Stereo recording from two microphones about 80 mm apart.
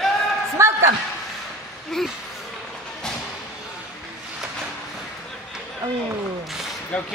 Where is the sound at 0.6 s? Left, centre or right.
Right.